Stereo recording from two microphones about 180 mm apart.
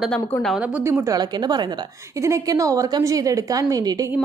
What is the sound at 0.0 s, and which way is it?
Speech, 5° left (ahead or behind).